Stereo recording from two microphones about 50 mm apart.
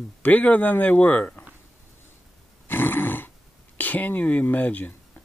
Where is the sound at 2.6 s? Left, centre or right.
Left.